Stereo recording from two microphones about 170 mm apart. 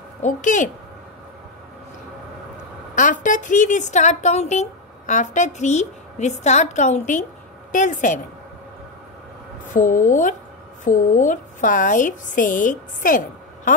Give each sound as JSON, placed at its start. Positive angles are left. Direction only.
{"t": 0.2, "sound": "a woman's voice", "side_deg": 50}
{"t": 3.0, "sound": "a woman's voice", "side_deg": 50}
{"t": 9.8, "sound": "a woman's voice", "side_deg": 50}